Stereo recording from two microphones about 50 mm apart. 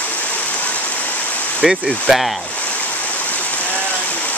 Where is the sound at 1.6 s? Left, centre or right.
Centre.